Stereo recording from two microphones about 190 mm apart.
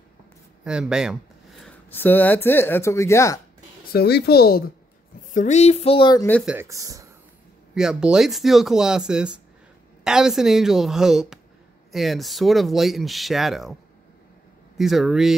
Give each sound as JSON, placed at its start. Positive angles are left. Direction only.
{"t": 0.7, "sound": "speech", "side_deg": -5}
{"t": 3.9, "sound": "a woman's voice", "side_deg": 55}
{"t": 5.3, "sound": "a sound", "side_deg": 40}
{"t": 6.4, "sound": "speech", "side_deg": -10}
{"t": 7.7, "sound": "speech", "side_deg": -5}
{"t": 14.8, "sound": "speech", "side_deg": 0}